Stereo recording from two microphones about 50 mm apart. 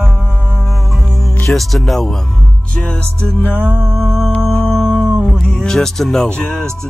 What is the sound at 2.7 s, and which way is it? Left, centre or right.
Music, left.